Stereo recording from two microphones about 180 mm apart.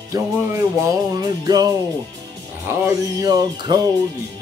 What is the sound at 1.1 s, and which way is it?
Music, 20° right (ahead or behind).